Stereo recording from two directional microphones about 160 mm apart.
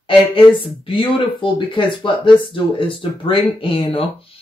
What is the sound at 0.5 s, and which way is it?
Speech, 30° left (ahead or behind).